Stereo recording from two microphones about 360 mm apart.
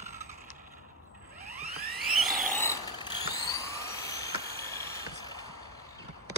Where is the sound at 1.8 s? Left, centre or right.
Right.